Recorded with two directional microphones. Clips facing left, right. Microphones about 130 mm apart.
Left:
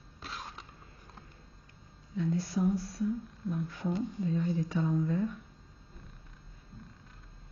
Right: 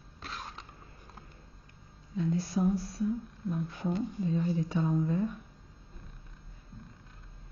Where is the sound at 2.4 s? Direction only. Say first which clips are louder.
Right 1 dB; 25° right (ahead or behind).